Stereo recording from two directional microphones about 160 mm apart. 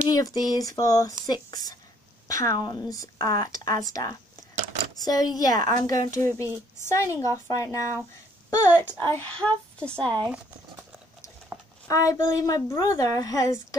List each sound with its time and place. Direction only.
0.1 s speech: 20° left (ahead or behind); by 10.1 s 5° left (ahead or behind)
11.9 s speech: 20° left (ahead or behind)